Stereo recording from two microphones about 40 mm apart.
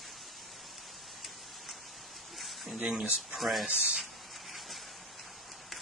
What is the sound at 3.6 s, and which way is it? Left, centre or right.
Speech, centre.